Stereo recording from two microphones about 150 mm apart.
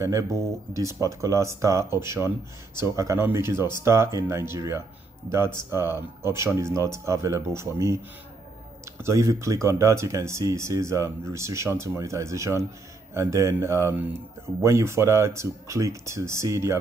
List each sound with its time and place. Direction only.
0.0 s speech: 20° right (ahead or behind)
9.0 s speech: 20° right (ahead or behind)